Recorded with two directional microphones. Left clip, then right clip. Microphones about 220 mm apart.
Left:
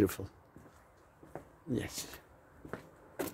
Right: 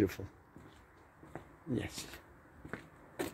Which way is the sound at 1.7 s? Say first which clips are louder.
Left 2 dB; 5° right (ahead or behind).